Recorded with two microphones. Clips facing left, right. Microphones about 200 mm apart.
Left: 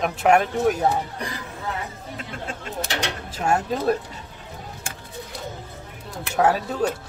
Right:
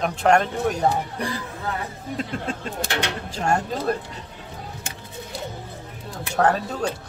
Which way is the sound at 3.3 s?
5° left (ahead or behind).